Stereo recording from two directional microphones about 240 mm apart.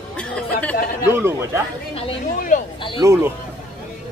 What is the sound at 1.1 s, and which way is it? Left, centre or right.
Speech, centre.